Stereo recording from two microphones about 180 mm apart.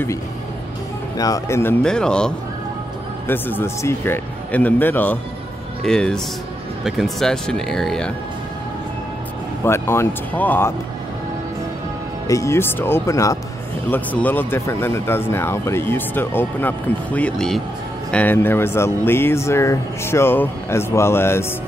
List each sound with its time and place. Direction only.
1.1 s speech: 20° left (ahead or behind); by 8.1 s 5° left (ahead or behind)
9.7 s speech: 15° left (ahead or behind)
12.3 s speech: 15° left (ahead or behind)